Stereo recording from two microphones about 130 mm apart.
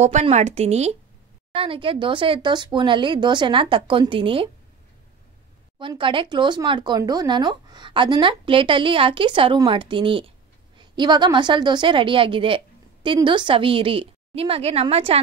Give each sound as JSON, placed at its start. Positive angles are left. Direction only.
{"t": 0.0, "sound": "a woman's voice", "side_deg": -60}
{"t": 1.5, "sound": "a woman's voice", "side_deg": -40}
{"t": 5.8, "sound": "a woman's voice", "side_deg": -40}